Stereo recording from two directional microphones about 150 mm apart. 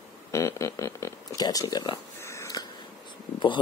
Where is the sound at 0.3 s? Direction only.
20° left (ahead or behind).